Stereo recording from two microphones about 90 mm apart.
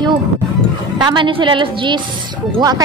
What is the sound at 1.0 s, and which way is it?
Speech, 65° right (ahead or behind).